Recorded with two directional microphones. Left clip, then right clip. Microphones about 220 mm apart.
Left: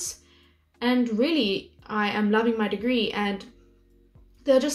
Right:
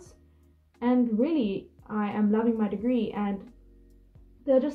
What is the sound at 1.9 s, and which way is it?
A woman's voice, 40° left (ahead or behind).